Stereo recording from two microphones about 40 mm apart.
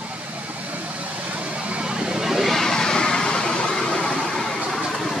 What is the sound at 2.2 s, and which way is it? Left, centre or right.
Vehicle, centre.